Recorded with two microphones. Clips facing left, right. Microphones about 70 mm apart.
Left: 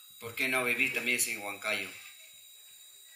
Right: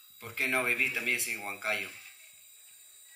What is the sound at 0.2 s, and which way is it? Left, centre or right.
Speech, right.